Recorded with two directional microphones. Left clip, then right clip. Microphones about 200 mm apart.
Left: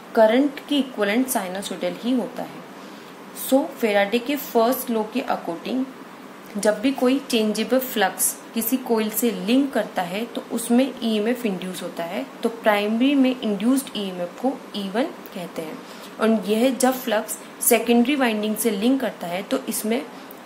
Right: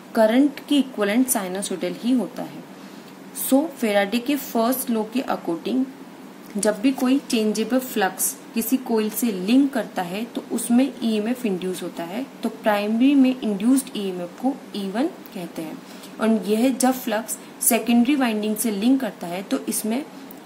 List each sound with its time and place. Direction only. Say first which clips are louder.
0.1 s a woman's voice: left 1 dB; 30° right (ahead or behind)
3.4 s a woman's voice: left 1 dB; 30° right (ahead or behind)